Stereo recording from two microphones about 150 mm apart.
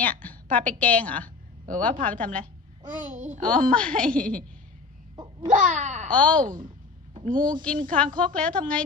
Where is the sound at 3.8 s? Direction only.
5° left (ahead or behind).